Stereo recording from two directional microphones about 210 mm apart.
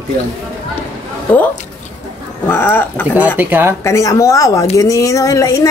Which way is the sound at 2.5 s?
10° left (ahead or behind).